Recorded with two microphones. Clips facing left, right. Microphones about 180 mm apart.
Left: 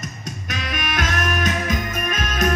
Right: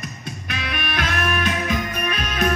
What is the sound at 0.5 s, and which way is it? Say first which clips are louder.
Music: left 1 dB; 45° left (ahead or behind).